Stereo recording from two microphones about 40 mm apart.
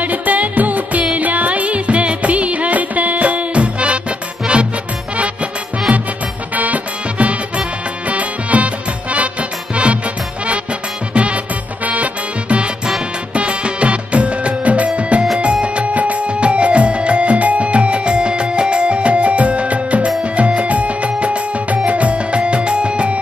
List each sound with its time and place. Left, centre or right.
0.0 s music: right
5.1 s music: right
6.5 s music: right
11.1 s music: right